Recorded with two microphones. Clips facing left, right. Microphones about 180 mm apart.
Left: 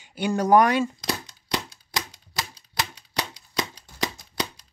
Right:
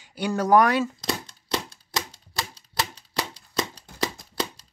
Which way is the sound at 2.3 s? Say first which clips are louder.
Right 1 dB; centre (ahead or behind).